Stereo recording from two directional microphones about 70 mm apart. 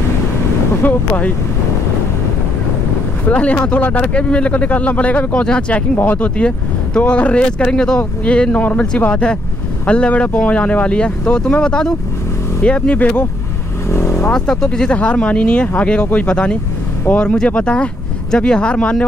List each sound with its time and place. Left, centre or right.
0.8 s speech: left
3.3 s speech: centre
13.8 s vehicle: left
14.3 s speech: centre